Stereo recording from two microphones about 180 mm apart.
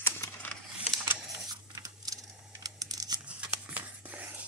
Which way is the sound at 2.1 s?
Centre (ahead or behind).